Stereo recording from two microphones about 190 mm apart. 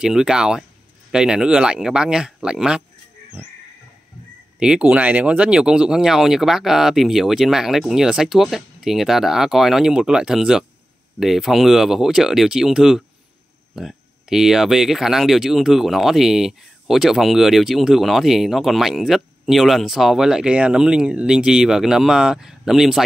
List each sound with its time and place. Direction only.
0.0 s speech: 5° right (ahead or behind)
4.6 s speech: 5° right (ahead or behind)